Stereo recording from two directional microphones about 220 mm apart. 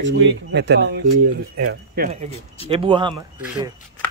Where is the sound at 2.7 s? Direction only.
25° right (ahead or behind).